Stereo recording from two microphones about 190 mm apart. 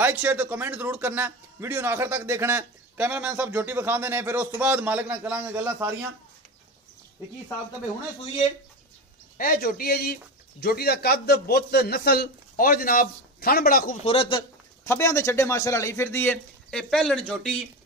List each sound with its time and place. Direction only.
0.0 s speech: 10° right (ahead or behind)
9.4 s a man's voice: 50° left (ahead or behind)
14.0 s speech: 30° left (ahead or behind)
14.9 s speech: 15° left (ahead or behind)